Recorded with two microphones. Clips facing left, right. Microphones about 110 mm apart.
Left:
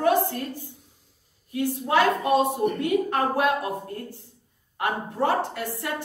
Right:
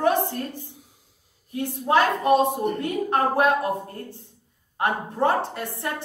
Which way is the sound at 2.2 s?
25° right (ahead or behind).